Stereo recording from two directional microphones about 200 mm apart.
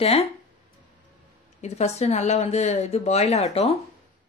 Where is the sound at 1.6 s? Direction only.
35° left (ahead or behind).